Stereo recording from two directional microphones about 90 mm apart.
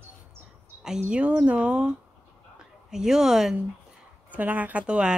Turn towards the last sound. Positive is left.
turn(degrees=-10)  # may be behind; listen again after turning